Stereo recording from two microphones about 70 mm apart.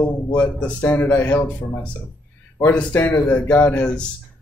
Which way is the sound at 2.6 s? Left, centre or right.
Left.